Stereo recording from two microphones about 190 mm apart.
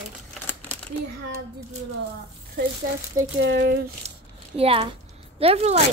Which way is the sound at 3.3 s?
65° right (ahead or behind).